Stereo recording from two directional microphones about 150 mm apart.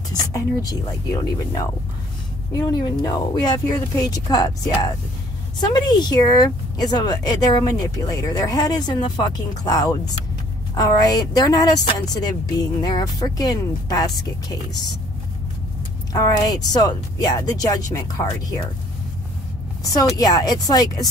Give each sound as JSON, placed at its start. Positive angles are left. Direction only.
{"t": 0.1, "sound": "a woman's voice", "side_deg": 25}
{"t": 16.1, "sound": "a woman's voice", "side_deg": 25}
{"t": 20.2, "sound": "a woman's voice", "side_deg": 25}